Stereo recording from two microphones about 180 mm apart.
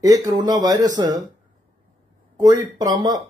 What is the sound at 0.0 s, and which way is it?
Speech, 20° right (ahead or behind).